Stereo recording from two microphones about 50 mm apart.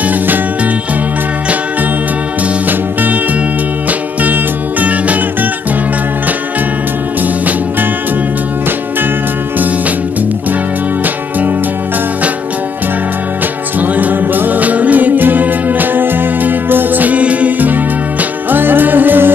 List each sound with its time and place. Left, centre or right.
4.2 s music: right
13.7 s music: right